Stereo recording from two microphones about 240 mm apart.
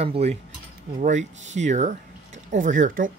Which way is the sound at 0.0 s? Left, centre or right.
Right.